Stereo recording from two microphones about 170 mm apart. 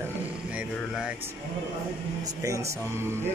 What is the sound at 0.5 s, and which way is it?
Mantra, 5° right (ahead or behind).